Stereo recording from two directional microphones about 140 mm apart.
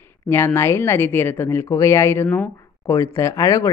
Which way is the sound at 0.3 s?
20° left (ahead or behind).